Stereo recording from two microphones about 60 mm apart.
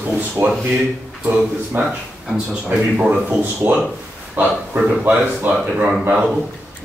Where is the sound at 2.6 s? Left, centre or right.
Centre.